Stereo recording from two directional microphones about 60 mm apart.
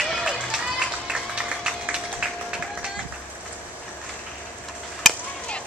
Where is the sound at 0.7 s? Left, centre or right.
Centre.